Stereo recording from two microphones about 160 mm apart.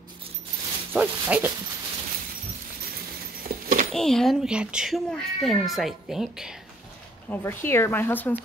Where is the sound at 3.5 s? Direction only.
70° right (ahead or behind).